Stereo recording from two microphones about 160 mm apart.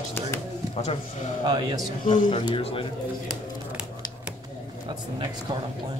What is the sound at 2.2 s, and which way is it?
Speech, 30° left (ahead or behind).